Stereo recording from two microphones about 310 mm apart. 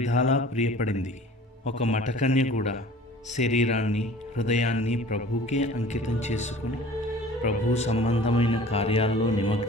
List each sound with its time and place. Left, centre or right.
0.0 s speech: left